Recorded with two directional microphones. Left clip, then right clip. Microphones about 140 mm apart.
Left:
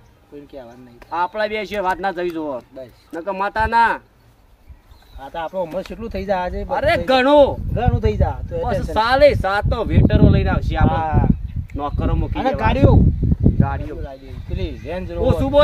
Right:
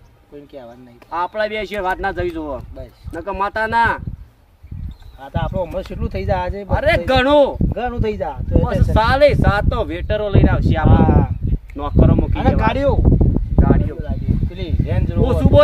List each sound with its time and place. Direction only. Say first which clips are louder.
1.1 s speech: even; 15° left (ahead or behind)
5.2 s speech: right 1 dB; centre (ahead or behind)
6.7 s speech: even; 10° left (ahead or behind)
7.7 s speech: even; centre (ahead or behind)
10.9 s speech: right 3 dB; centre (ahead or behind)
11.7 s speech: right 6 dB; 10° left (ahead or behind)
12.4 s speech: even; centre (ahead or behind)